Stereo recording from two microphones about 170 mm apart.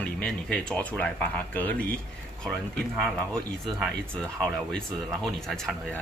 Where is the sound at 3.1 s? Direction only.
5° left (ahead or behind).